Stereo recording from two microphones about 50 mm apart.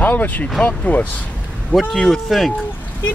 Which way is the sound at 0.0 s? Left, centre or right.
Left.